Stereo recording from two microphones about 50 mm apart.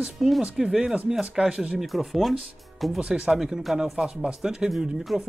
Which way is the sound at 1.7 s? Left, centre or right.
Centre.